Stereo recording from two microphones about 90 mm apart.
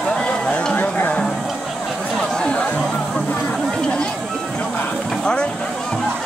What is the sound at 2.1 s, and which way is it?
Chatter, 10° left (ahead or behind).